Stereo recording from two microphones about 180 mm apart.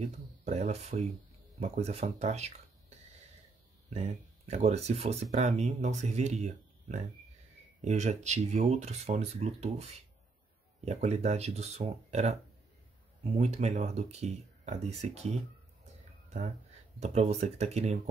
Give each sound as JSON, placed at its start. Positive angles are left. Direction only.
{"t": 0.0, "sound": "speech", "side_deg": -40}
{"t": 3.9, "sound": "speech", "side_deg": -40}
{"t": 17.0, "sound": "speech", "side_deg": -35}